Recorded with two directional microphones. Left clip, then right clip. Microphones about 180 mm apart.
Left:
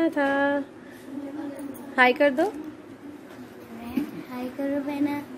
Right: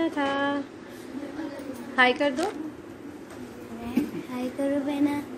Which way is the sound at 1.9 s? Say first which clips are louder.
Left 2 dB; 55° left (ahead or behind).